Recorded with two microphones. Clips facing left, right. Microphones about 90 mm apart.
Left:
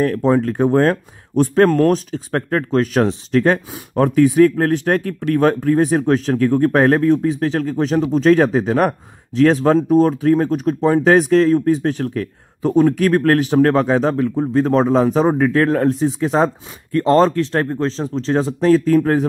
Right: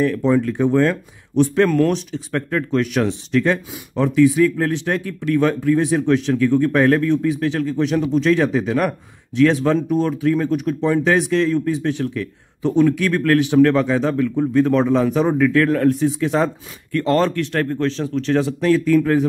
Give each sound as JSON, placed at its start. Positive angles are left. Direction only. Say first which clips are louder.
{"t": 0.0, "sound": "speech", "louder": "left 1 dB", "side_deg": 45}